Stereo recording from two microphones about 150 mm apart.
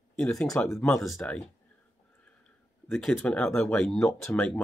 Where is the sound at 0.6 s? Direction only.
10° left (ahead or behind).